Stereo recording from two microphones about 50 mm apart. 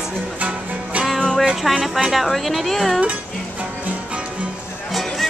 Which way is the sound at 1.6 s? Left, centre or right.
Centre.